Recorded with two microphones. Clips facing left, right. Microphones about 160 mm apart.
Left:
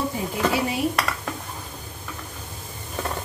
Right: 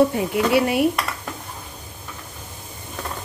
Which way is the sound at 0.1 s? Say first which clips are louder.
Right 5 dB; 65° right (ahead or behind).